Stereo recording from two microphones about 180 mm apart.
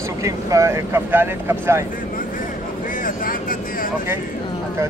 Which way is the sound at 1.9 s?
50° left (ahead or behind).